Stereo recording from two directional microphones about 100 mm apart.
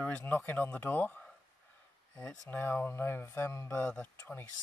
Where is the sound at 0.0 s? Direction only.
20° left (ahead or behind).